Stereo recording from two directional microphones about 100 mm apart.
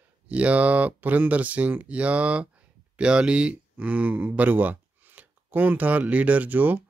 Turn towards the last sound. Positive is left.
turn(degrees=-15)  # may be behind; listen again after turning